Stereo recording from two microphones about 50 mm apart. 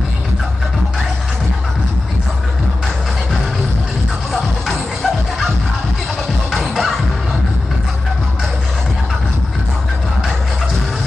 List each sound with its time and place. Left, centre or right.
4.3 s music: centre
6.7 s music: centre